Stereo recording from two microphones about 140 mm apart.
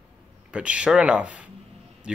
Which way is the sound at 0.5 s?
10° right (ahead or behind).